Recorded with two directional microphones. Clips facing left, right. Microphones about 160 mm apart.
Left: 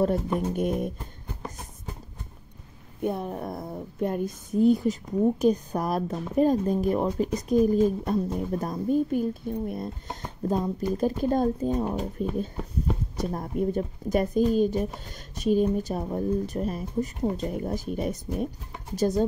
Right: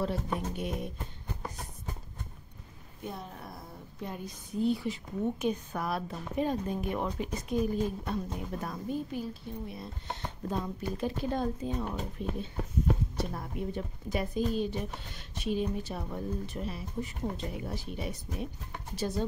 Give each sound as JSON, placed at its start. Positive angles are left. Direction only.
{"t": 0.6, "sound": "speech", "side_deg": 50}
{"t": 3.0, "sound": "a woman's voice", "side_deg": 55}
{"t": 10.5, "sound": "a woman's voice", "side_deg": 40}